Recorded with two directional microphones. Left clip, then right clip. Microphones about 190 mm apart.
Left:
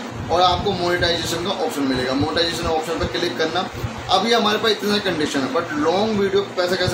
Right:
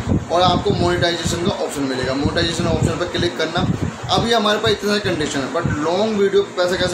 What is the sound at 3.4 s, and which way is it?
Speech, 15° right (ahead or behind).